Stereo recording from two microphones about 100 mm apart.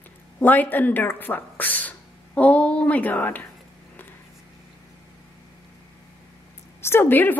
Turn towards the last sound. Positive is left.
turn(degrees=20)  # may be behind; listen again after turning